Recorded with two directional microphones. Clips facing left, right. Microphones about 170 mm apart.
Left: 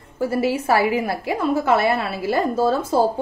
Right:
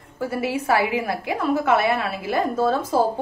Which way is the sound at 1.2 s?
30° left (ahead or behind).